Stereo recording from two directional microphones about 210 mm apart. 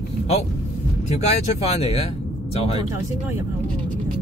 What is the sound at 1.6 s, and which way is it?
Speech, 30° left (ahead or behind).